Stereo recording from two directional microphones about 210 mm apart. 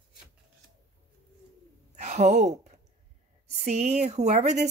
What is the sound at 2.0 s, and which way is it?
Speech, 35° right (ahead or behind).